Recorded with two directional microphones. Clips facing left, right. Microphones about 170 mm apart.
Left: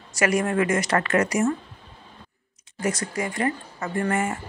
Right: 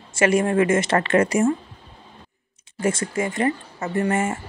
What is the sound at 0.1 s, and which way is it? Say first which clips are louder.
Speech: right 4 dB; 25° right (ahead or behind).